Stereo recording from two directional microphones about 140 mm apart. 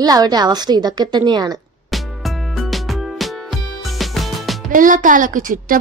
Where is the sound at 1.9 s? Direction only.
Centre (ahead or behind).